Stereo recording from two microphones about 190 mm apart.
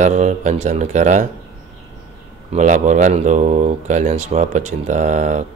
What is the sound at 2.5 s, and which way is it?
Mantra, 40° right (ahead or behind).